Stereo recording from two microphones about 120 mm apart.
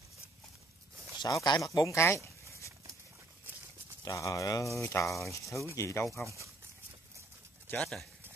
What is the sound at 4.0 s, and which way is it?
Speech, 25° left (ahead or behind).